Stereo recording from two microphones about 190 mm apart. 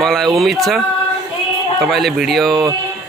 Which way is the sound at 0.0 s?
Centre (ahead or behind).